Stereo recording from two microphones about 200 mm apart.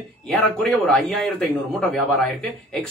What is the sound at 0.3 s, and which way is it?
Speech, 5° left (ahead or behind).